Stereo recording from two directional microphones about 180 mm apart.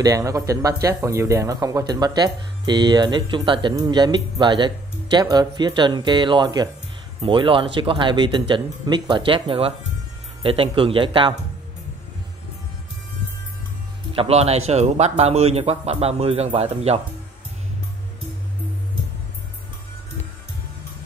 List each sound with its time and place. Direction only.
0.0 s speech: 20° right (ahead or behind)
14.1 s a man's voice: 35° right (ahead or behind)